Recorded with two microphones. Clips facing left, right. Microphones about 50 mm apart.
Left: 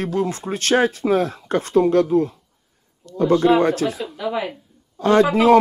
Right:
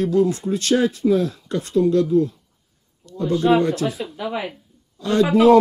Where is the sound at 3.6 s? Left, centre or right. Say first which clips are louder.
Left 2 dB; left.